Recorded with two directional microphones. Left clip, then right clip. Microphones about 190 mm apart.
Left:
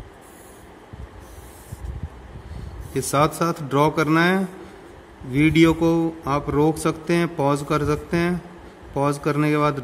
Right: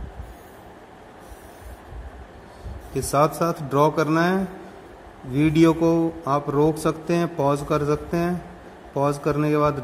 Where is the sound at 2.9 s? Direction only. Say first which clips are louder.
Even; 20° left (ahead or behind).